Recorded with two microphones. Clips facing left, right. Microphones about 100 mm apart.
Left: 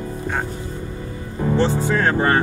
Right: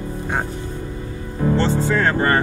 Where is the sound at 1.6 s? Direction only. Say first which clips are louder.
Left 2 dB; 15° left (ahead or behind).